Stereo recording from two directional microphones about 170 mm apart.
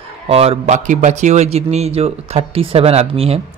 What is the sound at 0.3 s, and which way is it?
Speech, 35° right (ahead or behind).